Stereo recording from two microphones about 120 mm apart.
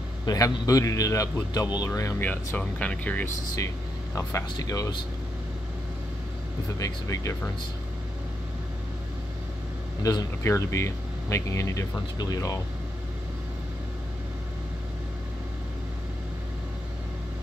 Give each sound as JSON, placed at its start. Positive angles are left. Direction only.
{"t": 0.2, "sound": "speech", "side_deg": 30}
{"t": 1.9, "sound": "speech", "side_deg": 25}
{"t": 2.2, "sound": "speech", "side_deg": 10}
{"t": 3.5, "sound": "speech", "side_deg": 25}
{"t": 6.8, "sound": "speech", "side_deg": 25}
{"t": 10.0, "sound": "speech", "side_deg": 25}